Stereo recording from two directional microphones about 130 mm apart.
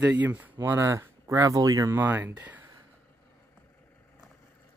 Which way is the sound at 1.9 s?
15° right (ahead or behind).